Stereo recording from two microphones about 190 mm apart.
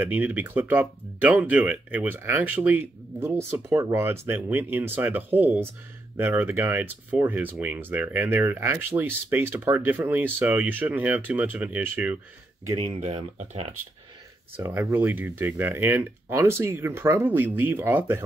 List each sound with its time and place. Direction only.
0.0 s speech: 10° right (ahead or behind)
12.7 s speech: 30° right (ahead or behind)
14.6 s speech: 15° right (ahead or behind)